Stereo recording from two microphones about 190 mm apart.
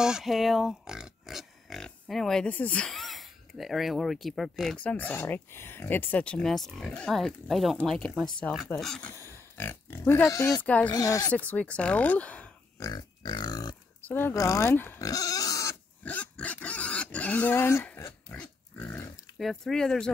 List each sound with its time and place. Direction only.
0.0 s speech: centre (ahead or behind)
9.1 s speech: 15° left (ahead or behind)
10.9 s speech: 20° left (ahead or behind)
12.8 s grunt: 20° left (ahead or behind)
14.0 s pig: 10° left (ahead or behind)